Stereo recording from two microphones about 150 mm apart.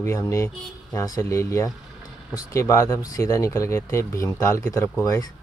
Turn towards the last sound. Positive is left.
turn(degrees=25)  # may be behind; listen again after turning